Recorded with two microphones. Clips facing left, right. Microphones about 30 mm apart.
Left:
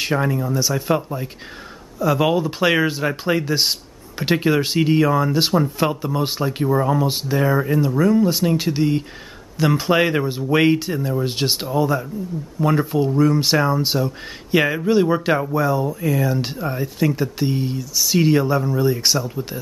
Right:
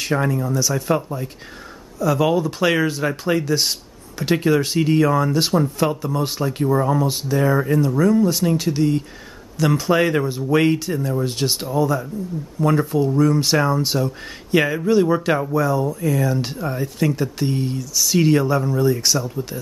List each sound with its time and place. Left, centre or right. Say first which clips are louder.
0.1 s speech: right 3 dB; centre
7.1 s speech: even; left